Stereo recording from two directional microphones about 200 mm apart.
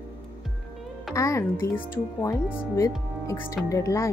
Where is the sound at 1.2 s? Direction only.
15° left (ahead or behind).